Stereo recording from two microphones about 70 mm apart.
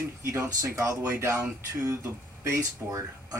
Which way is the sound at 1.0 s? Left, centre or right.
Right.